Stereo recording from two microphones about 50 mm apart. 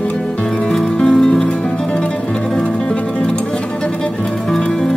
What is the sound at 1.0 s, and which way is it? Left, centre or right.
Music, centre.